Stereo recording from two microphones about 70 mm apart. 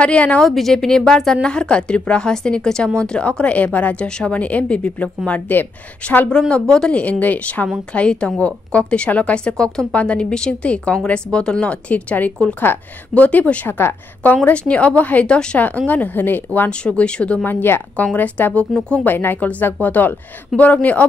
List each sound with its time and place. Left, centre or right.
0.0 s a woman's voice: centre
0.4 s a woman's voice: centre; by 6.2 s left
6.7 s a woman's voice: centre
13.7 s a woman's voice: left; by 15.6 s centre
15.9 s a woman's voice: left
16.8 s a woman's voice: centre
17.5 s a woman's voice: left; by 18.9 s centre
19.0 s a woman's voice: left